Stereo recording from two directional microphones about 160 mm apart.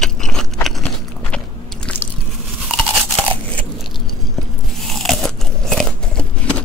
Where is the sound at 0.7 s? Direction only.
Centre (ahead or behind).